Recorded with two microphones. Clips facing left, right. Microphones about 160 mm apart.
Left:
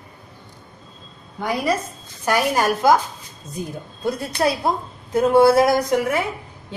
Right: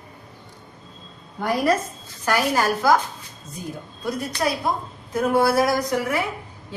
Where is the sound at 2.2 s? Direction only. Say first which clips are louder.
Left 2 dB; 15° left (ahead or behind).